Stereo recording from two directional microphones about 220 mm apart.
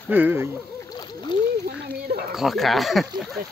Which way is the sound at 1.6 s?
45° right (ahead or behind).